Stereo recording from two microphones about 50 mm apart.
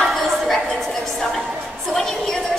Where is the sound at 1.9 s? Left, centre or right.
Centre.